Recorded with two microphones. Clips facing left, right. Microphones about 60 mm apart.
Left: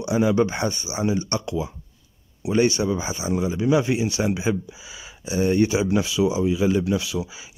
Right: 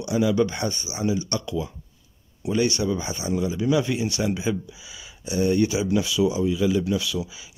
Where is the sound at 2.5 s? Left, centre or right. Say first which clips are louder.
Left 3 dB; left.